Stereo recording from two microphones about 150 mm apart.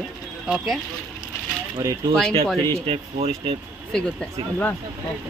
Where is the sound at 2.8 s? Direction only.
40° right (ahead or behind).